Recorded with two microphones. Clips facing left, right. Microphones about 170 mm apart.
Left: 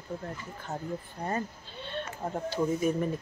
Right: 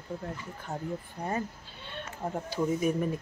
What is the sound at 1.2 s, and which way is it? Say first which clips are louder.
Speech: even; 10° right (ahead or behind).